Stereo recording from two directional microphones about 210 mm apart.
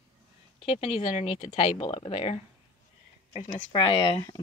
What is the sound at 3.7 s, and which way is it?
Speech, 25° left (ahead or behind).